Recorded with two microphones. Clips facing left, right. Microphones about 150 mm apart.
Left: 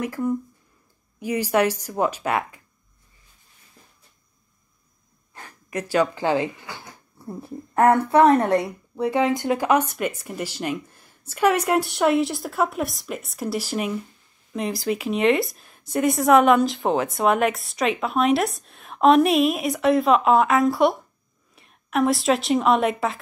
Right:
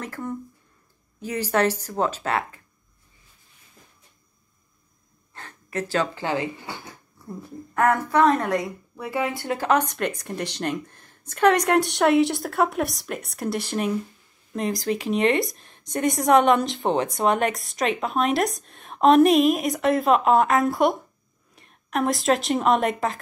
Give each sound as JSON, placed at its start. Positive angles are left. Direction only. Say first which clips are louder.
{"t": 0.0, "sound": "speech", "louder": "left 7 dB", "side_deg": 10}
{"t": 5.3, "sound": "speech", "louder": "even", "side_deg": 15}
{"t": 14.8, "sound": "speech", "louder": "left 1 dB", "side_deg": -35}
{"t": 15.0, "sound": "a woman's voice", "louder": "left 1 dB", "side_deg": 0}